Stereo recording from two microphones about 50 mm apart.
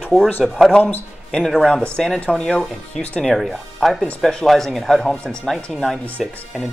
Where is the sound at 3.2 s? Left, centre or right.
Centre.